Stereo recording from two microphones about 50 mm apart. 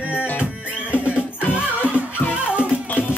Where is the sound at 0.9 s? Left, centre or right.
Right.